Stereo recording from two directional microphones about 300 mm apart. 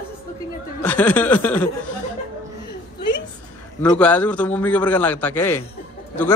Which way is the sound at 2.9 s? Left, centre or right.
Left.